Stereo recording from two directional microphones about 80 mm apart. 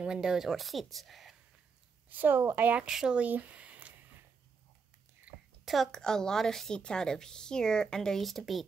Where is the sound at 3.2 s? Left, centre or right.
Centre.